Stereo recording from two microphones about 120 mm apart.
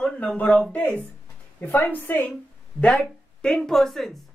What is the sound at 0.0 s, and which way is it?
A woman's voice, 5° left (ahead or behind).